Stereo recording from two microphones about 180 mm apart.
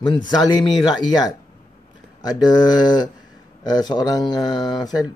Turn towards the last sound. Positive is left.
turn(degrees=20)  # may be behind; listen again after turning